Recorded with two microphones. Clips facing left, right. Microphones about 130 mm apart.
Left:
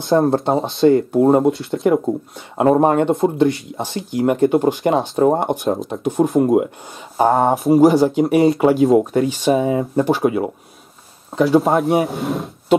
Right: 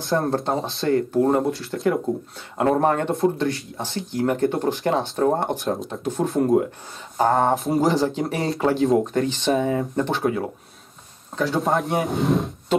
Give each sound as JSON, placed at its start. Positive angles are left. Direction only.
{"t": 0.0, "sound": "speech", "side_deg": 25}
{"t": 11.6, "sound": "speech", "side_deg": 10}